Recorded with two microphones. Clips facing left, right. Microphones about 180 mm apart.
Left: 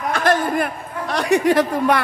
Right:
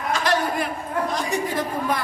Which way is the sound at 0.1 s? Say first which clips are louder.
Left 4 dB; 55° left (ahead or behind).